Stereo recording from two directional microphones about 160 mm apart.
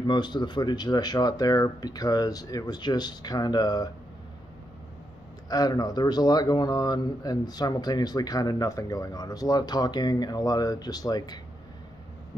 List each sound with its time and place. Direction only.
0.0 s speech: 25° left (ahead or behind)
5.5 s speech: 25° left (ahead or behind)